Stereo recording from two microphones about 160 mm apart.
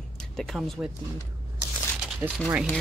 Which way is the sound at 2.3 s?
10° right (ahead or behind).